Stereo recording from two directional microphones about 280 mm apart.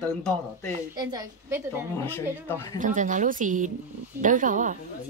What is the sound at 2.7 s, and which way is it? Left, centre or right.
Speech, right.